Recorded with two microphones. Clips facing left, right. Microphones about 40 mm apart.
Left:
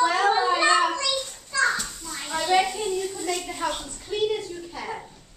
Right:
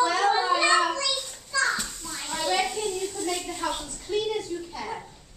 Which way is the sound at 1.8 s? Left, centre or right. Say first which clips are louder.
Left 1 dB; centre.